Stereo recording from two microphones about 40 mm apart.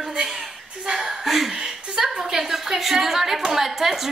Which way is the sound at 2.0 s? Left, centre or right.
Centre.